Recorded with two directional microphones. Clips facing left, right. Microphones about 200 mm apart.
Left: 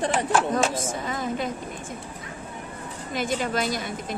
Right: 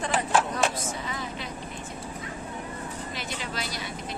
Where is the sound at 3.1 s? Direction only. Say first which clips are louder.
Left 13 dB; 50° left (ahead or behind).